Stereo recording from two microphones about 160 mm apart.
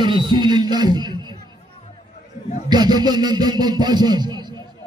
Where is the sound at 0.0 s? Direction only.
30° right (ahead or behind).